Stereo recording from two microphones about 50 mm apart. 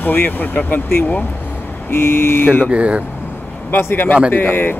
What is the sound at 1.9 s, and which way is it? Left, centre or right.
Speech, left.